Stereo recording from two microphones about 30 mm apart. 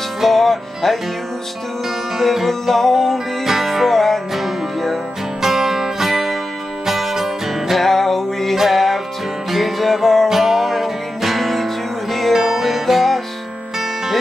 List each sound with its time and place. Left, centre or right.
0.2 s speech: centre
2.4 s music: centre
3.4 s music: centre
5.4 s music: centre
7.7 s music: centre
10.2 s music: centre
12.3 s music: centre